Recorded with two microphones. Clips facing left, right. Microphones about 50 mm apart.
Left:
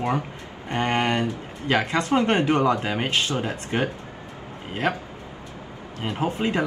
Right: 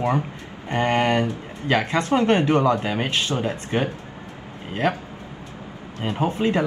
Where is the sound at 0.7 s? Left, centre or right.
Left.